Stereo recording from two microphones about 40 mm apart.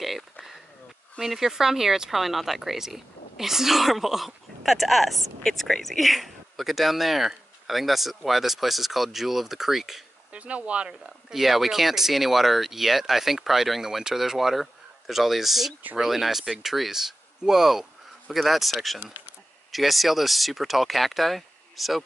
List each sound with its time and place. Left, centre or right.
0.0 s a sound: centre
1.2 s speech: centre
10.3 s speech: right
11.3 s speech: centre